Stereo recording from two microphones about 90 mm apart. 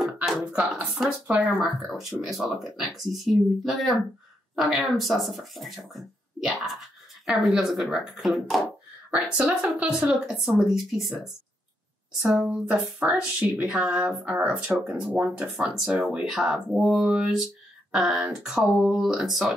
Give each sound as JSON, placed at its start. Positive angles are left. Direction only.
{"t": 0.0, "sound": "hands", "side_deg": -5}
{"t": 1.2, "sound": "speech", "side_deg": -15}
{"t": 2.2, "sound": "speech", "side_deg": -5}
{"t": 9.1, "sound": "speech", "side_deg": -15}
{"t": 12.2, "sound": "speech", "side_deg": -10}
{"t": 16.3, "sound": "speech", "side_deg": 0}